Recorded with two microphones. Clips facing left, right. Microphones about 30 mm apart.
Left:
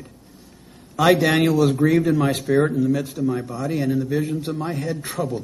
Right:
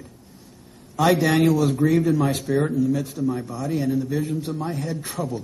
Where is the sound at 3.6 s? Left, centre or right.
Left.